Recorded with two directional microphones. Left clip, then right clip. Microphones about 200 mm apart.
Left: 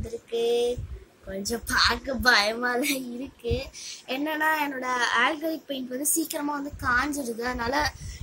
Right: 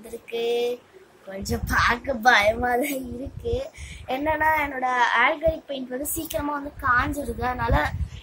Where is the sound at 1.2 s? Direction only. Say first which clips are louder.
Right 1 dB; 55° left (ahead or behind).